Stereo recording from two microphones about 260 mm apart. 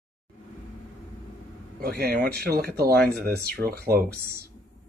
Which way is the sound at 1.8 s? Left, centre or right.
Right.